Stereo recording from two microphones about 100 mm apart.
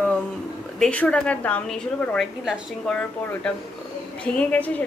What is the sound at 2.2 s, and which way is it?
Speech, centre (ahead or behind).